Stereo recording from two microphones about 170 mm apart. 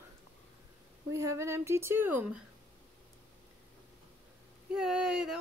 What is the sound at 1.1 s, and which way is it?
A woman's voice, 15° right (ahead or behind).